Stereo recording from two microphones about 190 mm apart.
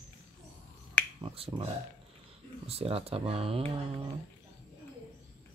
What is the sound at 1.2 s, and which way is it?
Speech, 30° right (ahead or behind).